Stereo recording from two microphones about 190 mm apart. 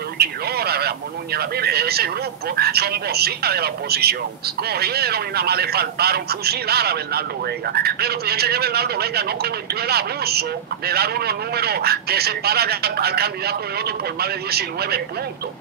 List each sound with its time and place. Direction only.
0.2 s speech: 55° right (ahead or behind)